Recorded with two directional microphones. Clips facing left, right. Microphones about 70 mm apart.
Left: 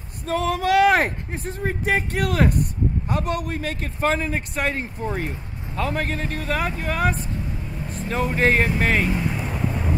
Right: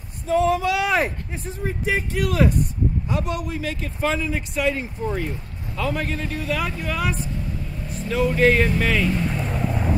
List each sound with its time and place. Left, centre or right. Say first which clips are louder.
0.3 s a man's voice: right 1 dB; left
8.3 s speech: right 2 dB; left
9.1 s vehicle: right 1 dB; centre